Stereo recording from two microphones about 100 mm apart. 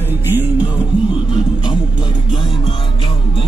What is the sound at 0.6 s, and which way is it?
Music, 50° left (ahead or behind).